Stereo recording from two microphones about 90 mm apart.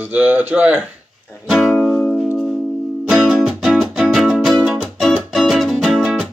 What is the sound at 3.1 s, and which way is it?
Music, 5° right (ahead or behind).